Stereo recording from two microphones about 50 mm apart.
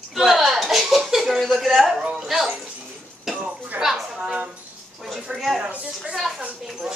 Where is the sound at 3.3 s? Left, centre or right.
Centre.